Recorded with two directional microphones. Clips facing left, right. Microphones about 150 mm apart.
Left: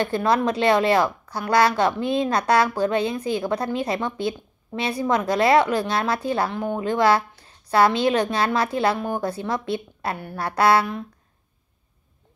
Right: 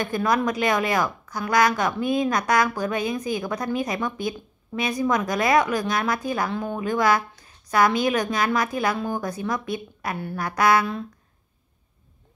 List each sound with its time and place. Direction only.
0.0 s a woman's voice: 30° left (ahead or behind)